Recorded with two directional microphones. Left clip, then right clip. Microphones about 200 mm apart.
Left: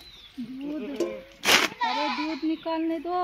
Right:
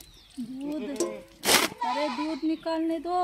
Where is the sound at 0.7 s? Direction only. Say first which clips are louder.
Left 1 dB; 10° right (ahead or behind).